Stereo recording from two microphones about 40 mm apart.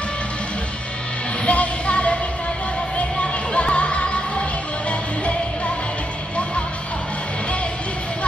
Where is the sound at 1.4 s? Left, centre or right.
Left.